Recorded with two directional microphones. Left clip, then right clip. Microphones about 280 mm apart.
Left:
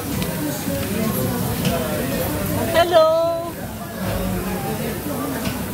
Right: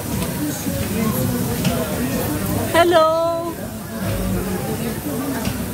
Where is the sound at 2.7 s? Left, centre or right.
Right.